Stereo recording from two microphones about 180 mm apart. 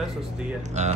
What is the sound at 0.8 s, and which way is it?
Speech, 40° right (ahead or behind).